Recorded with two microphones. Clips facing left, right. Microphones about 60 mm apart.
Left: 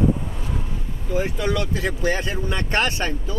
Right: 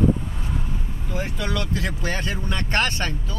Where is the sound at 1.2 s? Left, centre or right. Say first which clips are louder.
Left 4 dB; centre.